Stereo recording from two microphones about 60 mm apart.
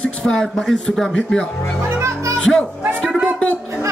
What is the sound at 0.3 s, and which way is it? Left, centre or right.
Speech, centre.